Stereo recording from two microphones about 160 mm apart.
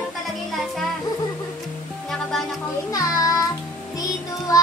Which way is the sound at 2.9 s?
20° left (ahead or behind).